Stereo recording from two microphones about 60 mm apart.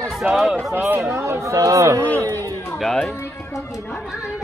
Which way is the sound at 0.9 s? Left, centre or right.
Right.